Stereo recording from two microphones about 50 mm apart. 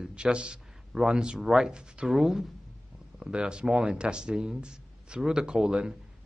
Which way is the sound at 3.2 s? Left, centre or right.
Centre.